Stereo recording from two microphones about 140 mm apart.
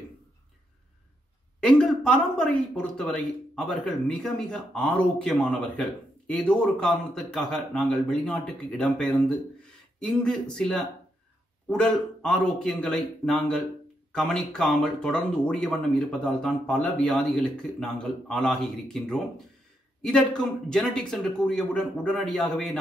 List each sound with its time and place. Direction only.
1.6 s speech: 5° left (ahead or behind)